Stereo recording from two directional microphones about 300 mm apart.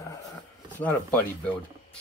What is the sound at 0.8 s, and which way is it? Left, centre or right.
Speech, centre.